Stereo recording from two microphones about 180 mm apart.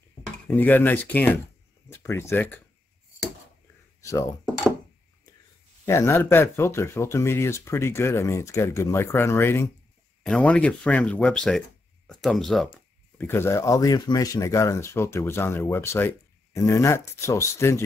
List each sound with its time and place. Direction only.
0.5 s speech: 10° left (ahead or behind)
4.0 s speech: 15° left (ahead or behind)
5.9 s speech: 15° left (ahead or behind)
13.2 s speech: 15° left (ahead or behind)